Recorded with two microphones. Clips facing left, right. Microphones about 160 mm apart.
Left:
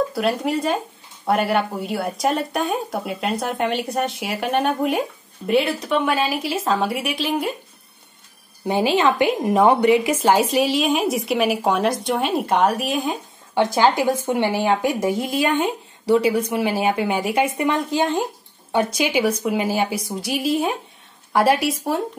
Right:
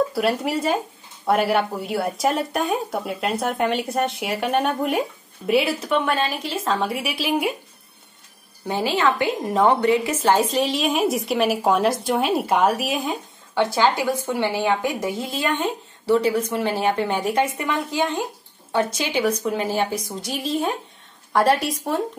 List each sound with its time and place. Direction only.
0.1 s a woman's voice: centre (ahead or behind)
8.6 s a woman's voice: 20° left (ahead or behind); by 13.2 s centre (ahead or behind)
13.7 s a woman's voice: 15° left (ahead or behind)